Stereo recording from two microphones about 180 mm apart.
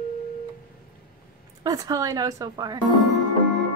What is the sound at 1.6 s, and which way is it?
A woman's voice, 20° right (ahead or behind).